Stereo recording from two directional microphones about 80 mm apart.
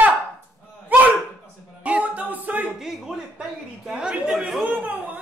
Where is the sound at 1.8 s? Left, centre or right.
Centre.